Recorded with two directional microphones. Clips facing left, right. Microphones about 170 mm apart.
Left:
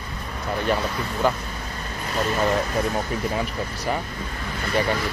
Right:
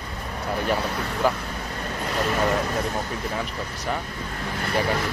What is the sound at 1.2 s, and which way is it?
Speech, 5° right (ahead or behind).